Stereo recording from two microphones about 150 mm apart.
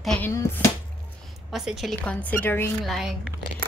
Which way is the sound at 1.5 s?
Centre (ahead or behind).